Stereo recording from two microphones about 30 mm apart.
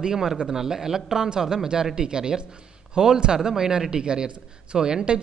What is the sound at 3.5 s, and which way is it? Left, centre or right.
Speech, centre.